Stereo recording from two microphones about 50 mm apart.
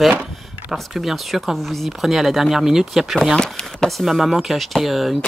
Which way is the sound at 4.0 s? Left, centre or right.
Centre.